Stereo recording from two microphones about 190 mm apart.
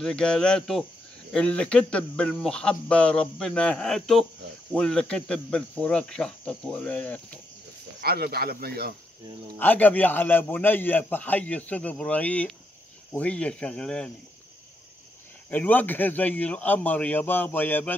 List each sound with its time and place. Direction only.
0.0 s speech: 5° left (ahead or behind)
8.0 s speech: 55° right (ahead or behind)
9.6 s a man's voice: 10° left (ahead or behind)
15.5 s a man's voice: 10° left (ahead or behind)